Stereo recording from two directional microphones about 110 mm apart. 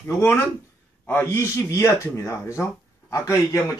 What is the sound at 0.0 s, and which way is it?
Speech, 20° left (ahead or behind).